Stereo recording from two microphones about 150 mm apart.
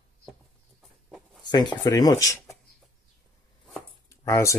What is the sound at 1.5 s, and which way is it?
Speech, 30° left (ahead or behind).